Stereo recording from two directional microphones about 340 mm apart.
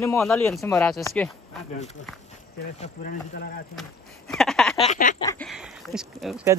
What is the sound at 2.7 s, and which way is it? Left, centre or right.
Speech, left.